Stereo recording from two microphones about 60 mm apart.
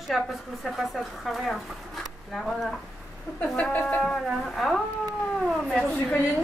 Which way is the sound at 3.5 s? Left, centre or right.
Left.